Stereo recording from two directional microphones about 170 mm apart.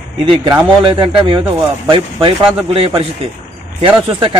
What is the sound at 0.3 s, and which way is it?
A man's voice, 25° right (ahead or behind).